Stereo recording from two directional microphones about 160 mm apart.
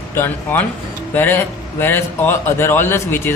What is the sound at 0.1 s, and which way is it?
A man's voice, 15° left (ahead or behind).